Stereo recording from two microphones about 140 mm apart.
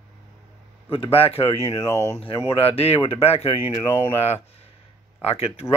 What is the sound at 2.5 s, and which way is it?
Speech, 45° left (ahead or behind).